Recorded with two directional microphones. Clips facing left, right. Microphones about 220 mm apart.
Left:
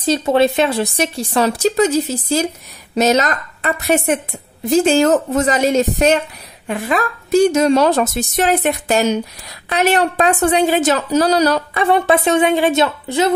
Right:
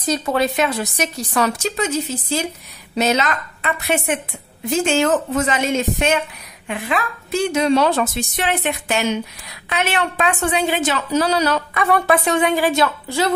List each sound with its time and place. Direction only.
0.0 s a woman's voice: 25° left (ahead or behind)